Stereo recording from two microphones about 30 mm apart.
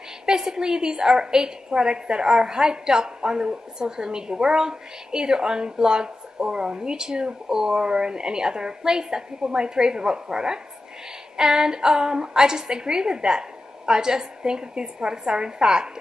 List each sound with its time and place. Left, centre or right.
0.3 s a woman's voice: right